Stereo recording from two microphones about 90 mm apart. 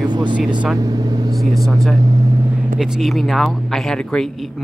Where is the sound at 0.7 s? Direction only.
45° right (ahead or behind).